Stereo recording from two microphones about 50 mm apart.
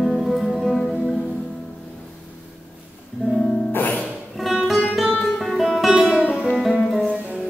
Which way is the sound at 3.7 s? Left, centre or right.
Left.